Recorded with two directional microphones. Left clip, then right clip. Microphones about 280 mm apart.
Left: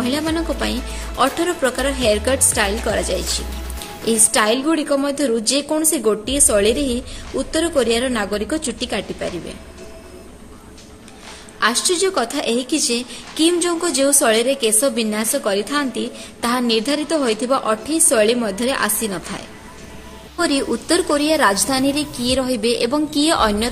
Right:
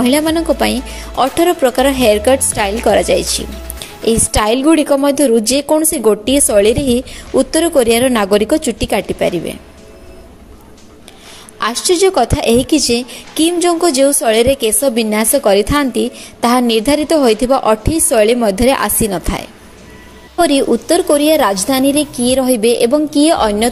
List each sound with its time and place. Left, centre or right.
0.0 s a woman's voice: right
11.6 s a woman's voice: centre